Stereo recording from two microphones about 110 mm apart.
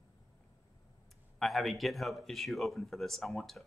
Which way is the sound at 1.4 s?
Centre (ahead or behind).